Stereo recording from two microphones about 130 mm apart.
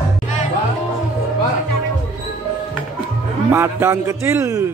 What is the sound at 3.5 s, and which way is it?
A man's voice, 20° right (ahead or behind).